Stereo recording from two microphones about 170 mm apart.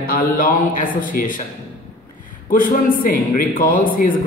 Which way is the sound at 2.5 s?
55° left (ahead or behind).